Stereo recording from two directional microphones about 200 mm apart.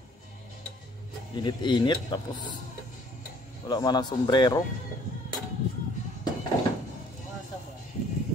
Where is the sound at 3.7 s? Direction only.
20° left (ahead or behind).